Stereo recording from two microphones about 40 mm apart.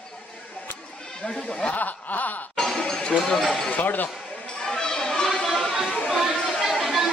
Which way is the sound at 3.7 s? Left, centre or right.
Left.